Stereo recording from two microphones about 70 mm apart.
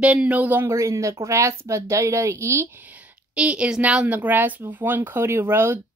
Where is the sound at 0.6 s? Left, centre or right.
Right.